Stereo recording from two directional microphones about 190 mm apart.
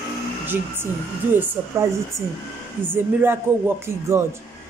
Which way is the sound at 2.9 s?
10° right (ahead or behind).